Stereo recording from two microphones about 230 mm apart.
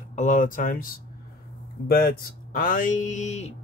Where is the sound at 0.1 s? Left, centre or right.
Left.